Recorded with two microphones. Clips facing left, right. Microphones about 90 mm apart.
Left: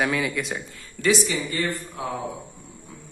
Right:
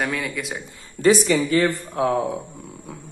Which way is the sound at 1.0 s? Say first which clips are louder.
Right 6 dB; 50° right (ahead or behind).